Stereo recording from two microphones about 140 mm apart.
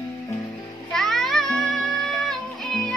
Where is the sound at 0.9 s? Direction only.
5° left (ahead or behind).